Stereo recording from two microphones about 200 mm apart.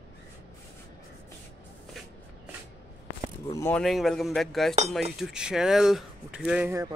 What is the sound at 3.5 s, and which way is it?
Speech, 15° left (ahead or behind).